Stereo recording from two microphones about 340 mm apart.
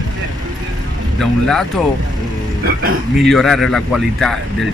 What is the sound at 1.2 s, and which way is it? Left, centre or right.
Speech, centre.